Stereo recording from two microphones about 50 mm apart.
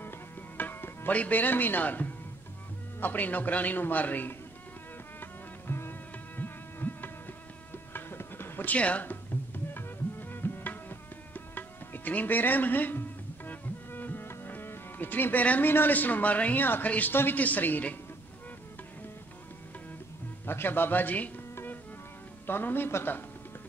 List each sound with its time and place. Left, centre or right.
0.6 s music: left
1.1 s a man's voice: left
5.2 s music: left
8.7 s speech: left
9.8 s music: left
15.6 s a man's voice: left
17.1 s a man's voice: left
17.4 s a man's voice: left
20.4 s a man's voice: left
22.5 s a man's voice: left